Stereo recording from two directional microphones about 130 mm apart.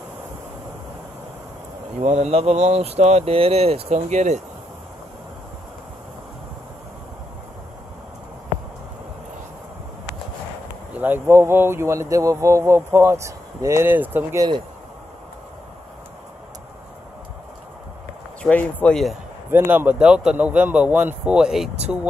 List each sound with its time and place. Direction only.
2.0 s speech: 60° right (ahead or behind)
10.9 s speech: 15° right (ahead or behind)
18.4 s speech: 10° left (ahead or behind)
19.5 s a man's voice: 15° right (ahead or behind)